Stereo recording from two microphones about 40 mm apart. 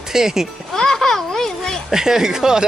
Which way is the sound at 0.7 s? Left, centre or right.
Centre.